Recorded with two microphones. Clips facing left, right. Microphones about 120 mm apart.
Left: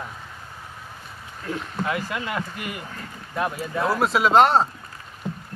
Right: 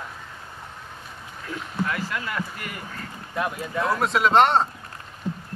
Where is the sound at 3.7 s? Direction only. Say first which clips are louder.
Left 1 dB; 5° left (ahead or behind).